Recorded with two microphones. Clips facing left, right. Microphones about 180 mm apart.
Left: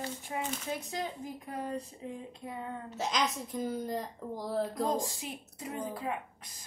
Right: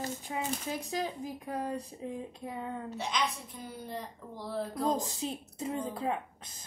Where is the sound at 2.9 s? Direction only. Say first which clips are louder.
Left 3 dB; 40° left (ahead or behind).